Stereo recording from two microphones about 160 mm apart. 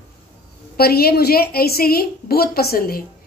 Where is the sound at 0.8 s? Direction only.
75° left (ahead or behind).